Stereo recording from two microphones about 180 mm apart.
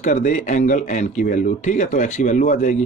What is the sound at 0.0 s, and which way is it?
Speech, 45° left (ahead or behind).